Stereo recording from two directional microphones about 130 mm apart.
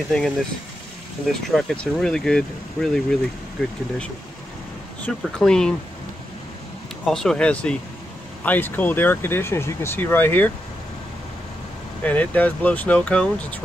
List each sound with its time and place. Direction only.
0.1 s speech: 5° left (ahead or behind)
5.0 s speech: 5° left (ahead or behind)
7.1 s speech: 5° left (ahead or behind)
12.0 s speech: 10° left (ahead or behind)